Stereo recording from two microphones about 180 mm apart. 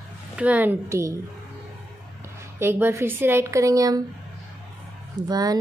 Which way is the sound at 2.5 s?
10° right (ahead or behind).